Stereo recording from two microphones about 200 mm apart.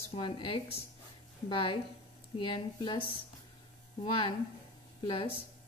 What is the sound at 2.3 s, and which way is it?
Speech, 25° left (ahead or behind).